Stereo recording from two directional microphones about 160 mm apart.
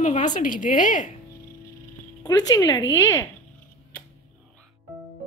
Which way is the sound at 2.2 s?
25° left (ahead or behind).